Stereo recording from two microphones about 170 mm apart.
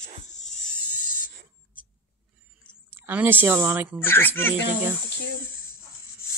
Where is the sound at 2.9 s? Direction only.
10° right (ahead or behind).